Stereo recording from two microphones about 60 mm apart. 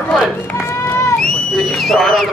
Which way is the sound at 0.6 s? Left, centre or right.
Left.